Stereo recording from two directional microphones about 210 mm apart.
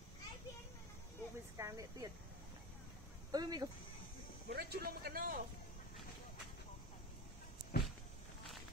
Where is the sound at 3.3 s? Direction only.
20° right (ahead or behind).